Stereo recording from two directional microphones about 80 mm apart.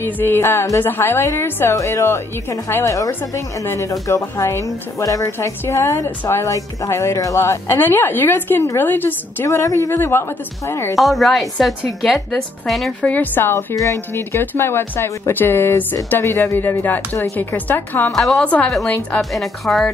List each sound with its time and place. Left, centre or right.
0.0 s speech: left
9.5 s speech: left
9.9 s speech: left
11.0 s a woman's voice: centre
13.0 s speech: left
18.1 s a woman's voice: centre
18.4 s a woman's voice: centre
19.3 s a woman's voice: centre